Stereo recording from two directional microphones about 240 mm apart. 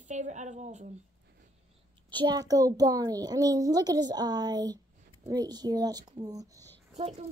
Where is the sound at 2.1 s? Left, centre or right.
Centre.